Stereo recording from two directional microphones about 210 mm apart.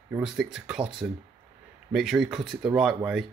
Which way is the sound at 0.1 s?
5° right (ahead or behind).